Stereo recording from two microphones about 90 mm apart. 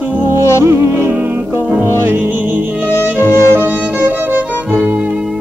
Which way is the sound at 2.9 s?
35° left (ahead or behind).